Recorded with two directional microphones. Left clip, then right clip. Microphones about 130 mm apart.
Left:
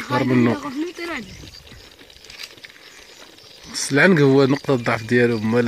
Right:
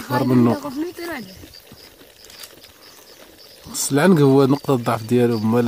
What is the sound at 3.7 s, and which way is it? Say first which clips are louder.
Speech: left 1 dB; 25° right (ahead or behind).